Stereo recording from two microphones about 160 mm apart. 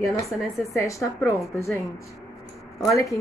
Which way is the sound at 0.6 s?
20° left (ahead or behind).